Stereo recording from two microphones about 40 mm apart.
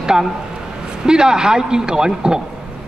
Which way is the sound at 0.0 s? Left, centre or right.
Centre.